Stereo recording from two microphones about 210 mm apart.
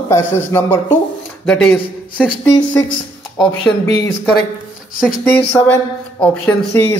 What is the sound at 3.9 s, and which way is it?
Speech, 15° left (ahead or behind).